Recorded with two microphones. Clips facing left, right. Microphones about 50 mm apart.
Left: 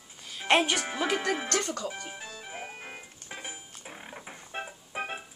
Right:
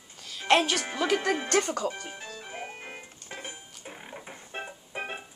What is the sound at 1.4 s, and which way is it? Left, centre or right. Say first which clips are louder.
Speech: right 4 dB; centre.